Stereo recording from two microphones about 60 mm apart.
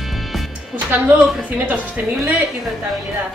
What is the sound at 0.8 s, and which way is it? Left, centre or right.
Speech, right.